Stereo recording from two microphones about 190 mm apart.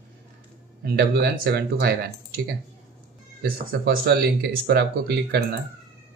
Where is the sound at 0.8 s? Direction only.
55° right (ahead or behind).